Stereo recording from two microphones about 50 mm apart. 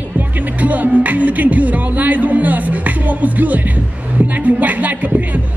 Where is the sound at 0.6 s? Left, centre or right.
Right.